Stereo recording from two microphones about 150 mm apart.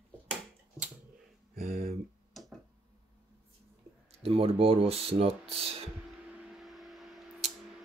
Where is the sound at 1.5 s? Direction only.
50° right (ahead or behind).